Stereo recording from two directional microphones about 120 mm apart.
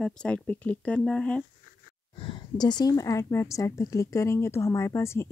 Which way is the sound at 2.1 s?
45° left (ahead or behind).